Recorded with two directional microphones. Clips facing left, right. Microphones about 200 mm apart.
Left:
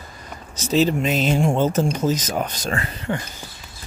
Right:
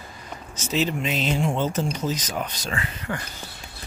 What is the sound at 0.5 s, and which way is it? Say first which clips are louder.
Speech: left 6 dB; 35° left (ahead or behind).